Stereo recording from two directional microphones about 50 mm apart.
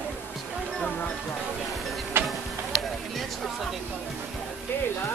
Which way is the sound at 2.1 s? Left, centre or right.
Right.